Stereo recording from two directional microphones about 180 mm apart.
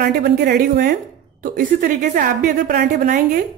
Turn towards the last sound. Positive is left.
turn(degrees=-50)  # may be behind; listen again after turning